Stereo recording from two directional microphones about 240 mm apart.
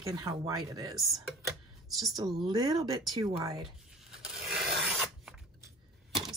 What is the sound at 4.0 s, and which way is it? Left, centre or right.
Filing, centre.